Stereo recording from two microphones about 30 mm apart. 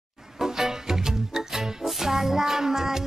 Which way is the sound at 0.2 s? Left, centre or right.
Centre.